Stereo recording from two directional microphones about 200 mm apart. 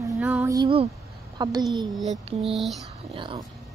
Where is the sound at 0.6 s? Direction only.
25° right (ahead or behind).